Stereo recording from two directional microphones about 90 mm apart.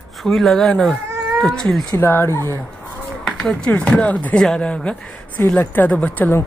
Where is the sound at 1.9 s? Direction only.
25° left (ahead or behind).